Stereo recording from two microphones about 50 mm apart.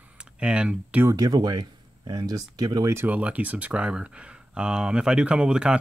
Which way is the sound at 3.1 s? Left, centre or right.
Right.